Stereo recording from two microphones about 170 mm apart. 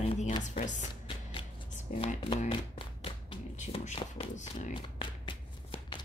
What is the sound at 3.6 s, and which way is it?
Speech, 40° left (ahead or behind).